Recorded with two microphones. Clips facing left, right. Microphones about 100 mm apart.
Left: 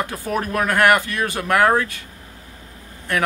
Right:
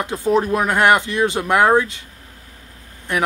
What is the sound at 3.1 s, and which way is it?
Speech, 15° right (ahead or behind).